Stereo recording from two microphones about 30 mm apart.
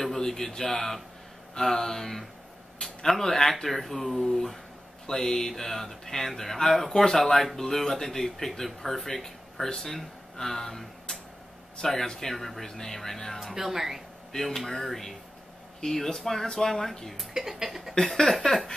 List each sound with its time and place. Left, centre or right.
0.0 s speech: centre
3.2 s speech: centre
5.0 s speech: centre
13.6 s speech: centre
14.3 s speech: centre
17.4 s speech: centre
18.0 s a sound: left